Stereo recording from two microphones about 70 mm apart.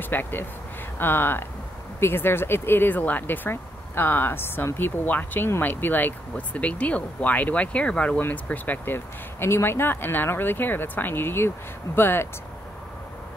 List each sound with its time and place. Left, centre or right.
0.0 s speech: left
8.2 s speech: left